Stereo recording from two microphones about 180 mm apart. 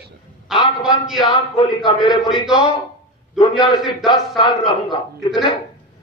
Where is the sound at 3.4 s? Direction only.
Centre (ahead or behind).